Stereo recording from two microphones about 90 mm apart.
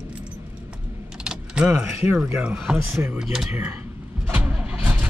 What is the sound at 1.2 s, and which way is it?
Vehicle, 10° right (ahead or behind).